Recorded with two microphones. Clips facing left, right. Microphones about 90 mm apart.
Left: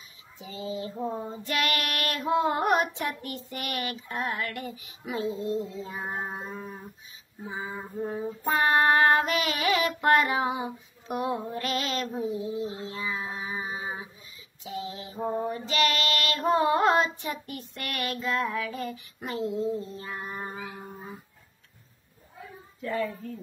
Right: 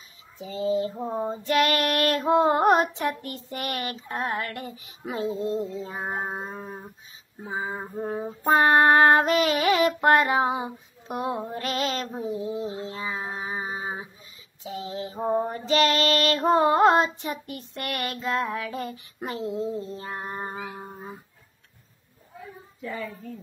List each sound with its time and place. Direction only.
0.4 s child singing: 35° right (ahead or behind)
6.1 s a sound: 45° right (ahead or behind)
8.5 s child singing: 35° right (ahead or behind)
14.6 s female singing: 30° right (ahead or behind)
15.2 s child singing: 35° right (ahead or behind)
18.8 s speech: 35° right (ahead or behind)
20.0 s child singing: 35° right (ahead or behind)
20.5 s a sound: 25° right (ahead or behind)
22.8 s a child's voice: centre (ahead or behind)